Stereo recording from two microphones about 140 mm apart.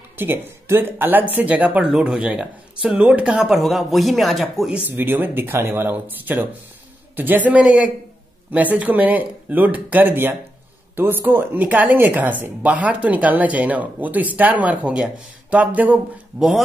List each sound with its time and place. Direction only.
0.2 s speech: 15° right (ahead or behind)